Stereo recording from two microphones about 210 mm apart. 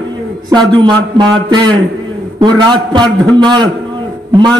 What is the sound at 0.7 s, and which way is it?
A man's voice, 20° right (ahead or behind).